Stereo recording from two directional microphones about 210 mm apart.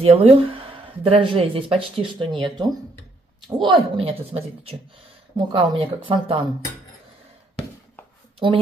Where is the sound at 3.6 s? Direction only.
25° right (ahead or behind).